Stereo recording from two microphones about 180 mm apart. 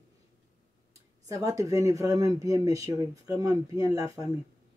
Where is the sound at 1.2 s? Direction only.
20° right (ahead or behind).